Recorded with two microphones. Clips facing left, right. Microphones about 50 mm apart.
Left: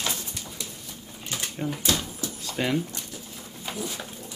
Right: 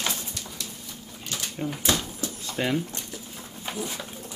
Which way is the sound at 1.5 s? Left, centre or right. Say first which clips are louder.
Even; centre.